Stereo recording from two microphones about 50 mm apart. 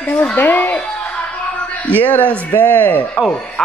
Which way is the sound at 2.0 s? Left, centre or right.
Left.